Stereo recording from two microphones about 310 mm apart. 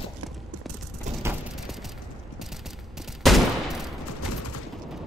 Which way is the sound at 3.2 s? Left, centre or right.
Centre.